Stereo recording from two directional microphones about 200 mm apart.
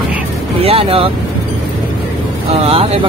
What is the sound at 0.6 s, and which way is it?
Speech, 30° right (ahead or behind).